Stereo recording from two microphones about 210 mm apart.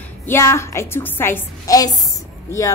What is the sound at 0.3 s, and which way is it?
A woman's voice, 10° left (ahead or behind).